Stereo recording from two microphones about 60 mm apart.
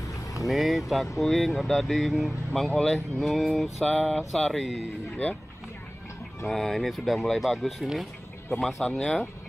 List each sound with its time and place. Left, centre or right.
0.0 s vehicle: left
0.5 s speech: centre
6.4 s speech: centre